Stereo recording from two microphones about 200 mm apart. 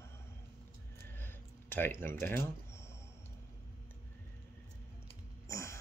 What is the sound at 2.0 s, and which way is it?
Speech, 10° left (ahead or behind).